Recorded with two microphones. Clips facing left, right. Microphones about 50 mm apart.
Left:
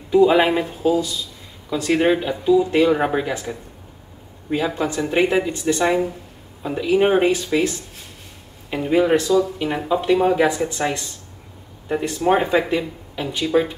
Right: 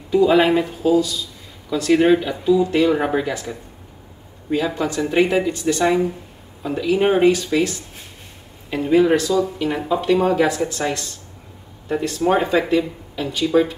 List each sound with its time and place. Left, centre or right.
0.1 s speech: centre
2.9 s speech: centre
4.5 s speech: centre
9.6 s speech: centre
12.2 s speech: centre